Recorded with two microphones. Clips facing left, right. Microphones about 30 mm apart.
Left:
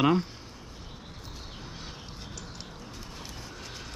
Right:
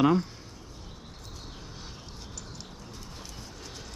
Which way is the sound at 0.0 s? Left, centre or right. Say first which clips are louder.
Right 1 dB; centre.